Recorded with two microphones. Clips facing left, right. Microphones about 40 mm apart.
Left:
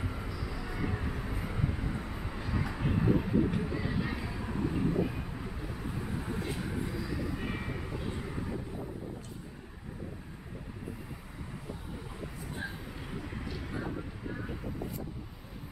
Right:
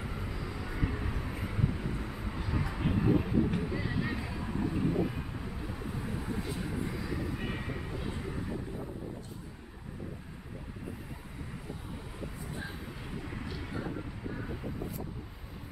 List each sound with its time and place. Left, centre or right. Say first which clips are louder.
0.0 s vehicle: left 1 dB; centre
0.3 s vehicle: even; right
0.6 s vehicle: right 1 dB; centre
0.8 s vehicle: left 1 dB; centre
6.9 s vehicle: even; centre
7.4 s vehicle: even; centre
13.3 s vehicle: even; centre